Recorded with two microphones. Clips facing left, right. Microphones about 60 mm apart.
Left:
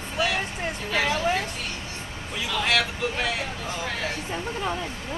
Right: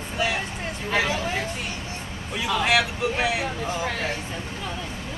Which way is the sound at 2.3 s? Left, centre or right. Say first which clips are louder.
Right 3 dB; centre.